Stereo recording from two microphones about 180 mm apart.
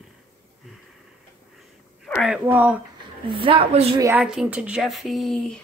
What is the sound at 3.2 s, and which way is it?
Speech, 30° right (ahead or behind).